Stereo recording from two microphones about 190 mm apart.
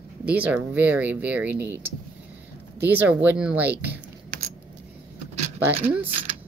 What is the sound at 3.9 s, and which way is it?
Typing, 45° right (ahead or behind).